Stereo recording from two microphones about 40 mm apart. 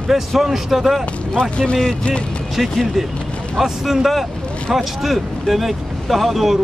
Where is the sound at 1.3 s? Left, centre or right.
Centre.